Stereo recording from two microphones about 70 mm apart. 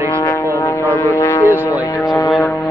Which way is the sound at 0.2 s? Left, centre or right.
Left.